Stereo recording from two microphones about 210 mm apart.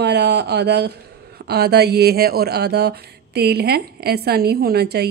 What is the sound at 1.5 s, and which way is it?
Speech, 50° right (ahead or behind).